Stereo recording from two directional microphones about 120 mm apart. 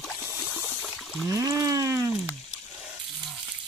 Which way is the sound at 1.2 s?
25° right (ahead or behind).